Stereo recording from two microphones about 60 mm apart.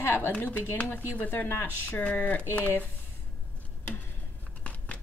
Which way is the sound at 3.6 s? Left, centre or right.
Left.